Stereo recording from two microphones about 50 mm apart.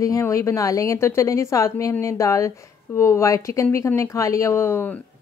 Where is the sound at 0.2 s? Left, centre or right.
Left.